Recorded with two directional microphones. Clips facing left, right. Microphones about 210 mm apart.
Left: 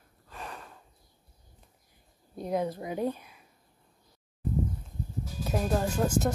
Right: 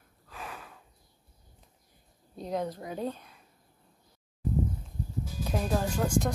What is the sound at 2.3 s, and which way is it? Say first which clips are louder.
Speech: left 3 dB; 10° left (ahead or behind).